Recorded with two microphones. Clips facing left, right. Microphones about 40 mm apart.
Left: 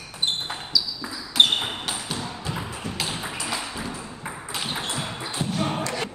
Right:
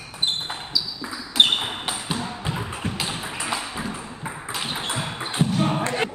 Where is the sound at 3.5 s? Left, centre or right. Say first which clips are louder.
Right 2 dB; right.